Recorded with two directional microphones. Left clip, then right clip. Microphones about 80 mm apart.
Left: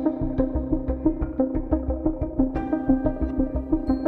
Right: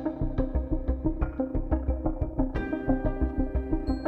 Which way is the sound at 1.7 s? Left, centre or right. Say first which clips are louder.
Left 6 dB; centre.